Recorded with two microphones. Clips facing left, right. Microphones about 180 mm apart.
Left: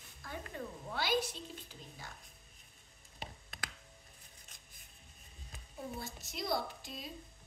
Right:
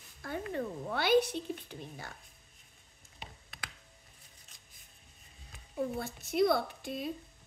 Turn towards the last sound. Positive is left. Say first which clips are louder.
# right 8 dB
turn(degrees=-55)  # may be behind; listen again after turning